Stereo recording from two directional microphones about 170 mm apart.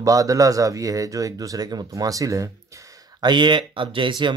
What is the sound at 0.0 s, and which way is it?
Speech, 20° right (ahead or behind).